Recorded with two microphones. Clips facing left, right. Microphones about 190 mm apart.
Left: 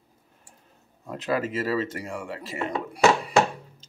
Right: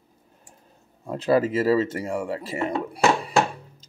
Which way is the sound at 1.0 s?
35° right (ahead or behind).